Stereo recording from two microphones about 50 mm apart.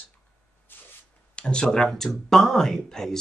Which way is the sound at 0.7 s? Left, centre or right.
Left.